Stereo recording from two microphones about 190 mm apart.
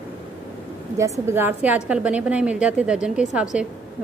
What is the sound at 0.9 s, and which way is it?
A woman's voice, 15° right (ahead or behind).